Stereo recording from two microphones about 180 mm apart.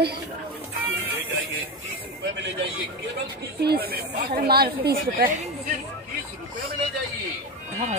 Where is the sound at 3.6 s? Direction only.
60° right (ahead or behind).